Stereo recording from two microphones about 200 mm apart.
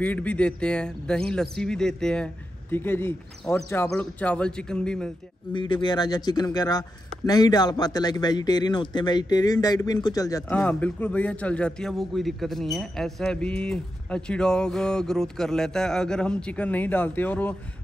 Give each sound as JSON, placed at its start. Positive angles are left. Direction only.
{"t": 0.0, "sound": "a man's voice", "side_deg": 5}
{"t": 5.5, "sound": "a man's voice", "side_deg": 25}
{"t": 10.5, "sound": "a man's voice", "side_deg": 5}